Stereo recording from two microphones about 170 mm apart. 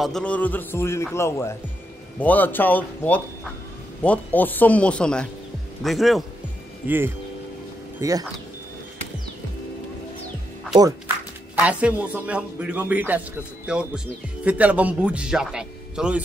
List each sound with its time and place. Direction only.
0.0 s a man's voice: 5° left (ahead or behind)
8.0 s speech: 20° right (ahead or behind)
11.5 s speech: 10° right (ahead or behind)